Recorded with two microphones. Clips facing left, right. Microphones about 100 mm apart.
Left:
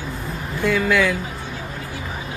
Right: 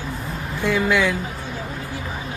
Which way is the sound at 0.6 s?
10° right (ahead or behind).